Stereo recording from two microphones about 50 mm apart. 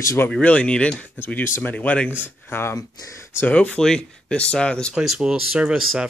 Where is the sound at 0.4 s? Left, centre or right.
Left.